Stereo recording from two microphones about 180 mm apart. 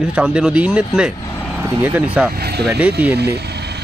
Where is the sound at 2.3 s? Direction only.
60° right (ahead or behind).